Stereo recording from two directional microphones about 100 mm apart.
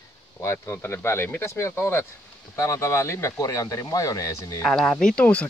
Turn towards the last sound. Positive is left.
turn(degrees=15)  # may be behind; listen again after turning